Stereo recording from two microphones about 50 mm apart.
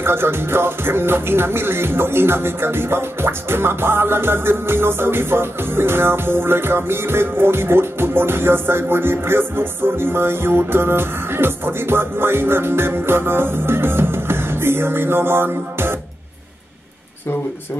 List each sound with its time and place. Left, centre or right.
0.0 s music: right